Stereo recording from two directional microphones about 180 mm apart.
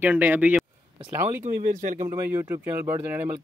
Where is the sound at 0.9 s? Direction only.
40° right (ahead or behind).